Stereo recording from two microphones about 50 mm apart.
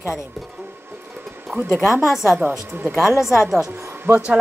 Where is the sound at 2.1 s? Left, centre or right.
Centre.